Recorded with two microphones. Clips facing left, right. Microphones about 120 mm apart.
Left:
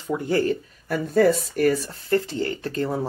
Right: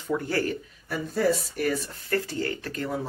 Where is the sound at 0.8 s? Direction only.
55° left (ahead or behind).